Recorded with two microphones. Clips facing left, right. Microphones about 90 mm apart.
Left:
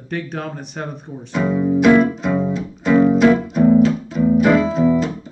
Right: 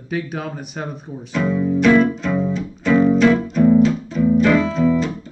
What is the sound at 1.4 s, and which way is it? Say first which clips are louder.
Speech: left 1 dB; 20° left (ahead or behind).